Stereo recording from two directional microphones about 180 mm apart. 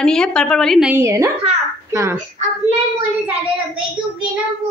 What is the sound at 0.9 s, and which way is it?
A woman's voice, 15° right (ahead or behind).